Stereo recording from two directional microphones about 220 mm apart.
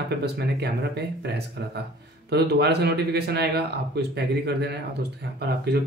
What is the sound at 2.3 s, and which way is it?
Speech, 50° right (ahead or behind).